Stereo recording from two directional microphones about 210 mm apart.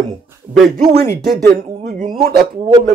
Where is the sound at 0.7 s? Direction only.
45° right (ahead or behind).